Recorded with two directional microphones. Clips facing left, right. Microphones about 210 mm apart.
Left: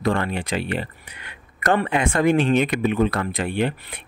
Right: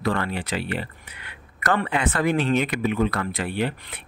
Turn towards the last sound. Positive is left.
turn(degrees=20)  # may be behind; listen again after turning